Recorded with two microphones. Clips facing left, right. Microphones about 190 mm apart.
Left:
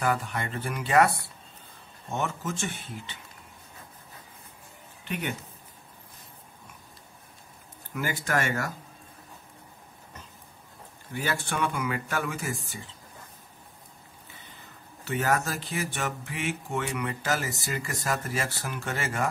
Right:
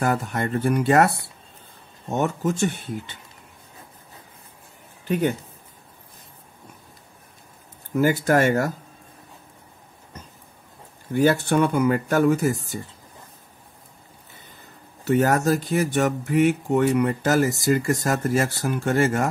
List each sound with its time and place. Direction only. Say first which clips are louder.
0.0 s speech: right 5 dB; 45° right (ahead or behind)
2.1 s speech: right 8 dB; 40° right (ahead or behind)
5.0 s speech: right 11 dB; 35° right (ahead or behind)
7.9 s speech: right 10 dB; 40° right (ahead or behind)
11.1 s speech: right 12 dB; 40° right (ahead or behind)
15.0 s speech: right 9 dB; 40° right (ahead or behind)